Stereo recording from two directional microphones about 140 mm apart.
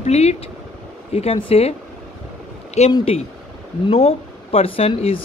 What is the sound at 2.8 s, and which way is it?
Speech, 50° left (ahead or behind).